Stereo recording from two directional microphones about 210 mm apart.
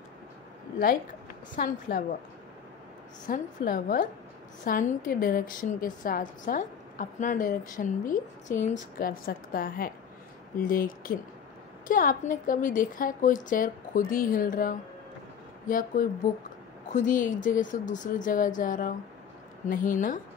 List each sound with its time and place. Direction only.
1.5 s a woman's voice: 40° left (ahead or behind)
3.3 s a woman's voice: 40° left (ahead or behind)
16.0 s a woman's voice: 40° left (ahead or behind)